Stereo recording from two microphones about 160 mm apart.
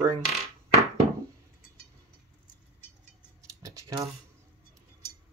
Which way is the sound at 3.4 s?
20° right (ahead or behind).